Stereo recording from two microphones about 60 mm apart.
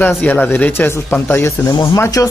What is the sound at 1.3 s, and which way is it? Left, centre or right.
Speech, left.